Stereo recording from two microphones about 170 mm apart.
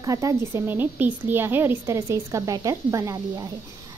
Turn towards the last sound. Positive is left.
turn(degrees=-20)  # may be behind; listen again after turning